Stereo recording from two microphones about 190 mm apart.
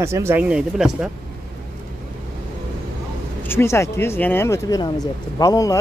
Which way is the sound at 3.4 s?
10° left (ahead or behind).